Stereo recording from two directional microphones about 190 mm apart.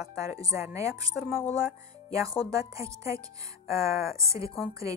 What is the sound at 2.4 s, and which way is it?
Speech, 15° right (ahead or behind).